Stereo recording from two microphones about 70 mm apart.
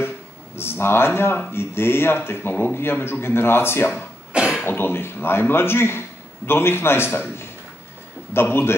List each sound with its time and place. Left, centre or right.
0.6 s speech: left
4.3 s cough: centre
4.6 s speech: left